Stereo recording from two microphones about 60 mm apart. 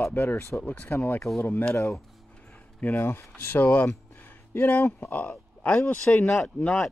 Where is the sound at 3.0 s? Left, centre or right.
Left.